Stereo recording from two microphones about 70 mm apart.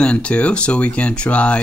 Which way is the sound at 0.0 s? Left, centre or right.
Centre.